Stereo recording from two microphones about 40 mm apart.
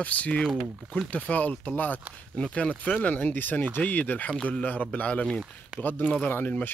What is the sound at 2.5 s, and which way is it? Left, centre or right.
Speech, left.